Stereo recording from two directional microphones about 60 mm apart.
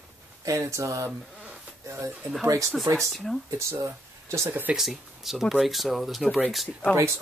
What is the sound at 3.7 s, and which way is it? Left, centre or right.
Speech, right.